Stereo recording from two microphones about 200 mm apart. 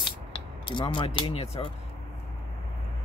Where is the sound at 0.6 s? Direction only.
25° left (ahead or behind).